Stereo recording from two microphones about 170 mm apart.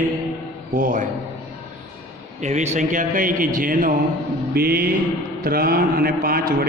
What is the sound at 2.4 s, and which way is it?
A man's voice, 40° right (ahead or behind).